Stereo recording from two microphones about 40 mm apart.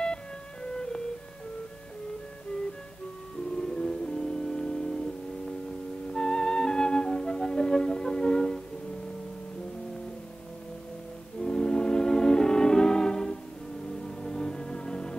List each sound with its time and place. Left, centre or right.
0.7 s music: centre
3.5 s music: centre
6.1 s music: centre
11.4 s music: centre